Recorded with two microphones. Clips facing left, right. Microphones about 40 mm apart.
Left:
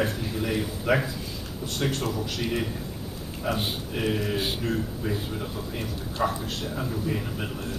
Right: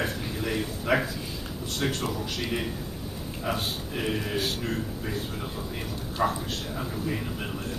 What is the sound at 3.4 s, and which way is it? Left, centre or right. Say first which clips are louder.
Speech: left 2 dB; centre.